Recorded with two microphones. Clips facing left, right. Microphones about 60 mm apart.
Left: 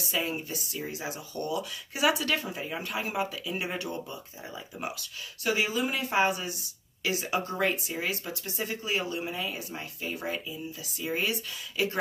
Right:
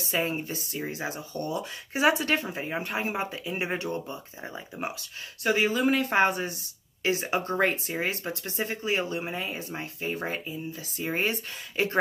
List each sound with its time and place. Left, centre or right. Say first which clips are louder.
0.1 s speech: right 3 dB; right
5.4 s speech: right 4 dB; right